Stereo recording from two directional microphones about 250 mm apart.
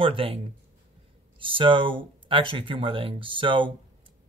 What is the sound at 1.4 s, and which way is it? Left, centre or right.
Speech, centre.